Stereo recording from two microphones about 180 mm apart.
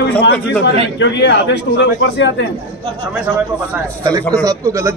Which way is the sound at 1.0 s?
75° left (ahead or behind).